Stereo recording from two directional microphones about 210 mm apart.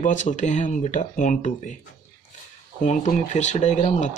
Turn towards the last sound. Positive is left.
turn(degrees=35)  # may be behind; listen again after turning